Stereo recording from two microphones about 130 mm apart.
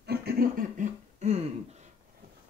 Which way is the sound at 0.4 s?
85° right.